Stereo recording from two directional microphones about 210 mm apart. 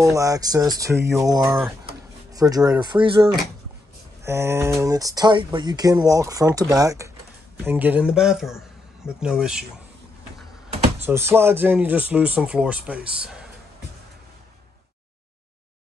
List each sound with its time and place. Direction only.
0.0 s speech: 15° right (ahead or behind)
4.2 s speech: 10° right (ahead or behind)
11.0 s speech: 10° right (ahead or behind)